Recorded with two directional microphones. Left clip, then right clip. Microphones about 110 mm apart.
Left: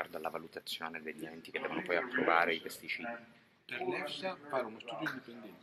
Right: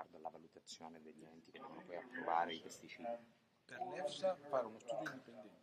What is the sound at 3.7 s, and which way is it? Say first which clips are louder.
Speech: left 7 dB; 40° right (ahead or behind).